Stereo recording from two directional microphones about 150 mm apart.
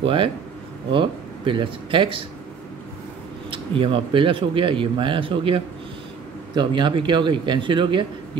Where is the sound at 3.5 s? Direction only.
35° right (ahead or behind).